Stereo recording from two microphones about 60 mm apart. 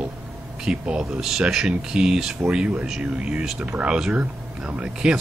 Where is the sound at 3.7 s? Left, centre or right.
Right.